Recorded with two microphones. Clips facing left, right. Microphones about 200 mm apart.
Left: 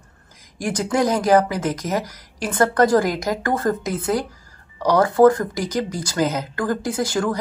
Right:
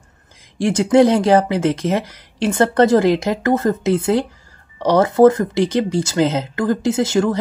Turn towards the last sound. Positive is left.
turn(degrees=-25)  # may be behind; listen again after turning